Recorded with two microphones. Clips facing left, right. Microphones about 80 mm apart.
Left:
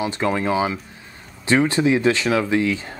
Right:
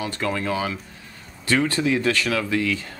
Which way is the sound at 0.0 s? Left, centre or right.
Centre.